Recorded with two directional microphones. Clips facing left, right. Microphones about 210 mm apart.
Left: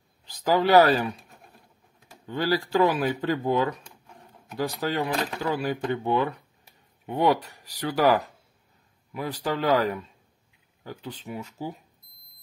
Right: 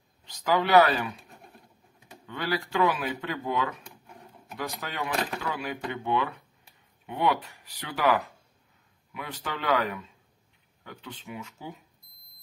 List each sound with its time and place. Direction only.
0.2 s speech: 35° left (ahead or behind)
2.2 s speech: 35° left (ahead or behind)